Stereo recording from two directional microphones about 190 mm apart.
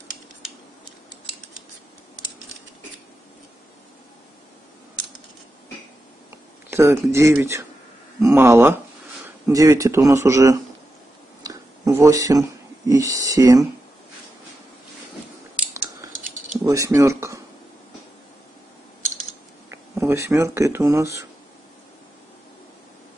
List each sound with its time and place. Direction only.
6.7 s speech: 15° right (ahead or behind)
11.4 s a sound: 15° right (ahead or behind)
16.6 s speech: 15° right (ahead or behind)
19.7 s speech: 15° right (ahead or behind)